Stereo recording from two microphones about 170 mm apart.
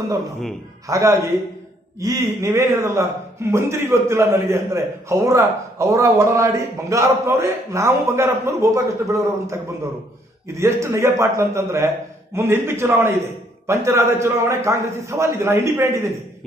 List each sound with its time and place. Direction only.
0.8 s a man's voice: 20° right (ahead or behind)